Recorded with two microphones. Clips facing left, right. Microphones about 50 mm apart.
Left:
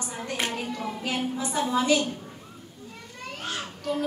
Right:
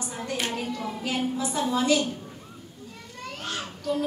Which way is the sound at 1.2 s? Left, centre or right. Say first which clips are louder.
Right 2 dB; centre.